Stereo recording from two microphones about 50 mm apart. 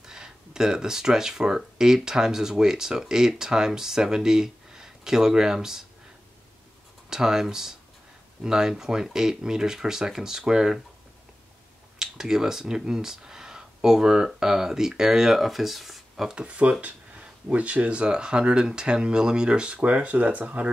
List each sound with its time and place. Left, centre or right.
0.0 s speech: centre
7.1 s speech: centre
12.0 s speech: centre
16.3 s speech: right